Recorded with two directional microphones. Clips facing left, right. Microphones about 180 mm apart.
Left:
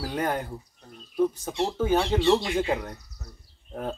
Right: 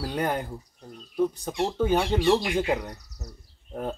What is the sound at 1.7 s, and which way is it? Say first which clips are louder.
Speech: even; 5° left (ahead or behind).